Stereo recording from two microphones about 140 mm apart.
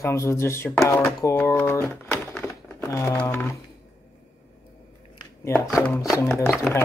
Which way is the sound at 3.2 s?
15° left (ahead or behind).